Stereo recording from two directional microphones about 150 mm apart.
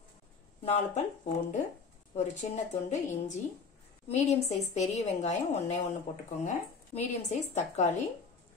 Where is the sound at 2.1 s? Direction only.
50° left (ahead or behind).